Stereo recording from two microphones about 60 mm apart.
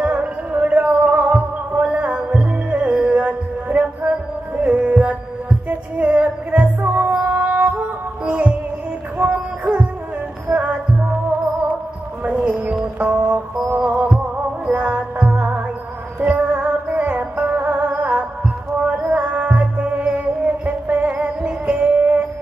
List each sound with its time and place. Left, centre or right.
0.0 s music: right
12.3 s a sound: right
13.0 s music: right
14.7 s music: right